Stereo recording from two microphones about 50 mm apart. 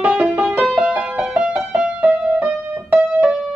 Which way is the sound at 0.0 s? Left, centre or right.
Right.